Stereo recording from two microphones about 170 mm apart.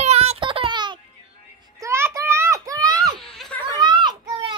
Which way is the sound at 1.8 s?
15° right (ahead or behind).